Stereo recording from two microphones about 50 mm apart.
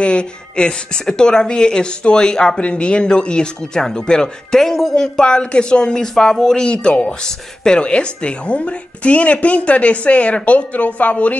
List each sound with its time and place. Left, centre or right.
0.0 s speech: centre